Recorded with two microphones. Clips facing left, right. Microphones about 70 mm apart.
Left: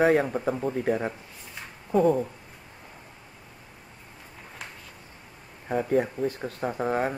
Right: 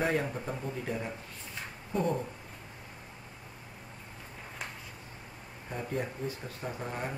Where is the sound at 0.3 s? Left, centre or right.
Left.